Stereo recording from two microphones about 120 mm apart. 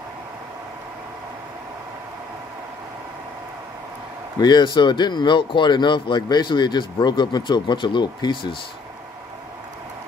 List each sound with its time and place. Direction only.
4.4 s speech: 35° left (ahead or behind)